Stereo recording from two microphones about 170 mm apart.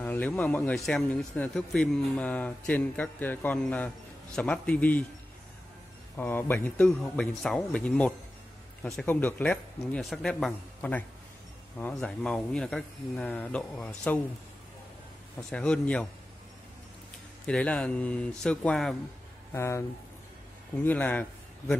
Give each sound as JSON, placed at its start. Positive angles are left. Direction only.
{"t": 0.0, "sound": "speech", "side_deg": 10}
{"t": 6.1, "sound": "speech", "side_deg": 10}
{"t": 15.5, "sound": "speech", "side_deg": 5}
{"t": 17.5, "sound": "speech", "side_deg": 5}
{"t": 19.5, "sound": "speech", "side_deg": 15}
{"t": 20.8, "sound": "a man's voice", "side_deg": 10}